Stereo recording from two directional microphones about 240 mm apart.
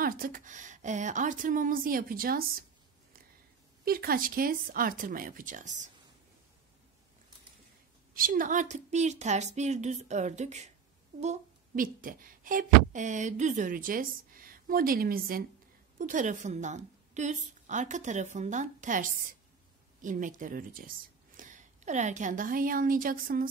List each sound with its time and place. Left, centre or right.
0.0 s speech: right
3.8 s speech: right
8.1 s a woman's voice: right